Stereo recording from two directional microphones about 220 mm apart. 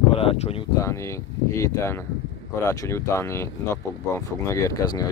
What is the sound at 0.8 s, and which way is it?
Speech, 15° left (ahead or behind).